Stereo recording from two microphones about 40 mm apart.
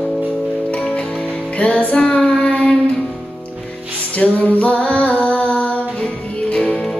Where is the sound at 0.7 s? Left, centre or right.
Left.